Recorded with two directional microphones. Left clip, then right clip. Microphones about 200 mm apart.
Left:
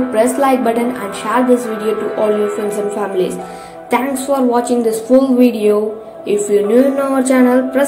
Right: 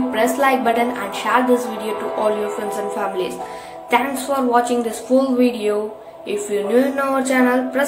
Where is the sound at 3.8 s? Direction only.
Centre (ahead or behind).